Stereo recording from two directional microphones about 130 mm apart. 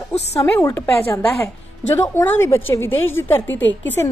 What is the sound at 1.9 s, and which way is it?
A woman's voice, 20° left (ahead or behind).